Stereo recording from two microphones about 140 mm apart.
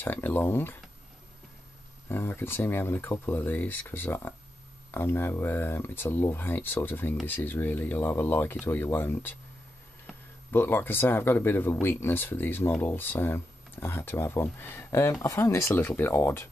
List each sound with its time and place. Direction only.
0.0 s speech: 15° left (ahead or behind)
2.0 s speech: 15° left (ahead or behind)
10.5 s speech: 15° left (ahead or behind)